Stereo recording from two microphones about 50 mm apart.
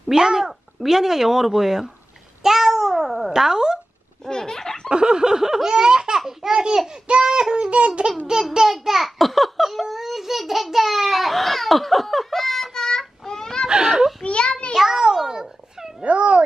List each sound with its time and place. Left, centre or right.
0.1 s speech: centre
2.4 s babbling: centre
3.0 s speech: centre
4.2 s a sound: centre
4.8 s laughter: centre
6.9 s speech: centre
8.3 s a child's voice: centre
13.7 s a child's voice: centre
14.2 s a sound: left
14.7 s a sound: centre
16.0 s speech: right